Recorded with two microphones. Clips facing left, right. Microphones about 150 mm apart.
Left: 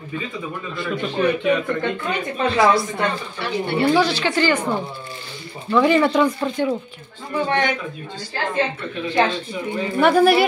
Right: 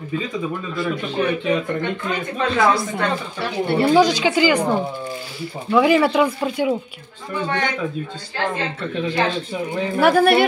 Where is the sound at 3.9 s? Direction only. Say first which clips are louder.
Right 5 dB; 15° right (ahead or behind).